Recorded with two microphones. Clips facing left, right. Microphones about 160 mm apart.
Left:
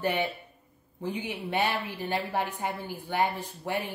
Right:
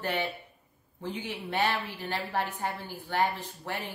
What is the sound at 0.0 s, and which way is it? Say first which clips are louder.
Speech: left 3 dB; 15° left (ahead or behind).